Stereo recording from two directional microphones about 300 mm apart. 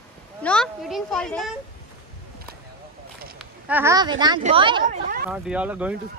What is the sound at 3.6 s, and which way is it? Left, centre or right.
Speech, centre.